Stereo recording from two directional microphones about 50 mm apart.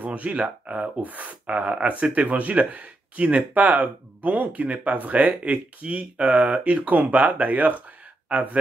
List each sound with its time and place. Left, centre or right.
0.0 s speech: right